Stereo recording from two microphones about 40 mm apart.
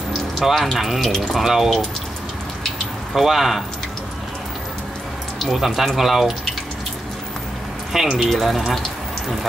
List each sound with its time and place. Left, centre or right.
0.4 s speech: centre
3.2 s speech: centre
5.4 s speech: centre
7.9 s speech: centre